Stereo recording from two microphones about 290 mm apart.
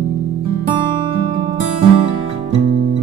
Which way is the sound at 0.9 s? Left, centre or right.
Centre.